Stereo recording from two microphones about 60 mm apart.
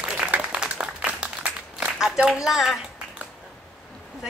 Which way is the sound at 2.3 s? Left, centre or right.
Centre.